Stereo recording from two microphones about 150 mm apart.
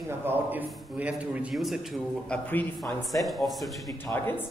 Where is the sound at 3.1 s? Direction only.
Centre (ahead or behind).